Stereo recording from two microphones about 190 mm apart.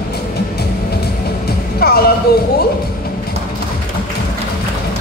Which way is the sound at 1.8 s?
55° left (ahead or behind).